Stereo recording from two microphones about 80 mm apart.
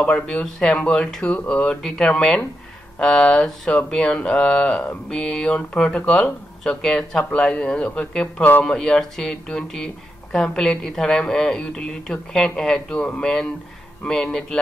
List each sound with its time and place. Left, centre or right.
0.0 s speech: centre